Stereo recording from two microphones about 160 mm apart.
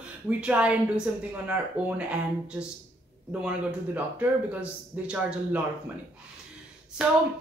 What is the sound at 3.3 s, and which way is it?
Speech, 5° right (ahead or behind).